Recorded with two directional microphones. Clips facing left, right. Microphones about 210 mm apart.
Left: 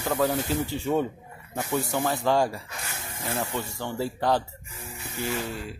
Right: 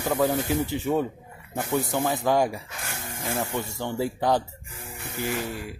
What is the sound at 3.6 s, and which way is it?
Speech, 15° right (ahead or behind).